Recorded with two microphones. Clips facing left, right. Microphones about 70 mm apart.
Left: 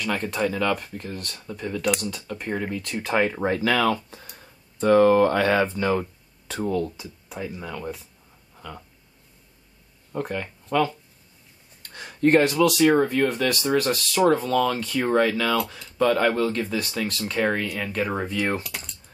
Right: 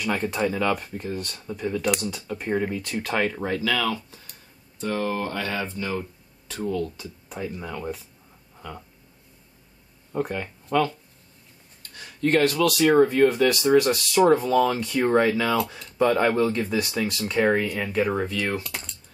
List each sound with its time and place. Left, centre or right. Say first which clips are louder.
0.0 s speech: even; centre
3.0 s speech: left 3 dB; centre
3.4 s speech: left 4 dB; left
6.6 s speech: left 2 dB; left
7.0 s speech: right 1 dB; centre
10.1 s speech: right 1 dB; centre
11.9 s a sound: left 4 dB; left
12.6 s speech: right 1 dB; centre
15.5 s speech: even; centre
18.3 s speech: left 2 dB; left
18.6 s coin: even; centre